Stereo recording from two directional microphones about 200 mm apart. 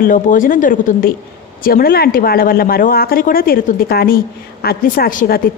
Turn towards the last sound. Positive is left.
turn(degrees=45)  # may be behind; listen again after turning